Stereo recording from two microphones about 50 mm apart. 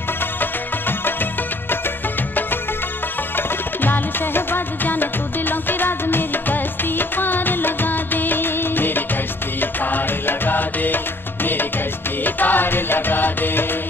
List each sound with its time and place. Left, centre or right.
0.4 s music: left
3.3 s music: left
12.4 s music: left